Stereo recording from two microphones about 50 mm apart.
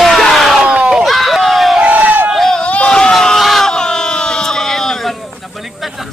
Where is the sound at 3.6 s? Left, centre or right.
Centre.